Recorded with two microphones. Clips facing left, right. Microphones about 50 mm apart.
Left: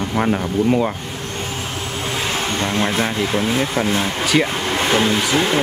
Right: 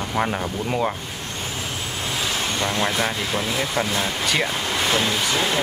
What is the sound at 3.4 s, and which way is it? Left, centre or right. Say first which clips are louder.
Speech: left 6 dB; left.